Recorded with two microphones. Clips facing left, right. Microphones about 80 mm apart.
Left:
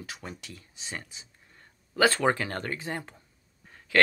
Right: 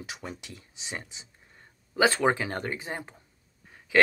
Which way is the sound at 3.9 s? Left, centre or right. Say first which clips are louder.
Right 1 dB; centre.